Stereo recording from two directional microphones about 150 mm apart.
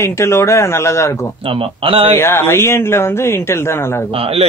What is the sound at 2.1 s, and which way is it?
A man's voice, 15° left (ahead or behind).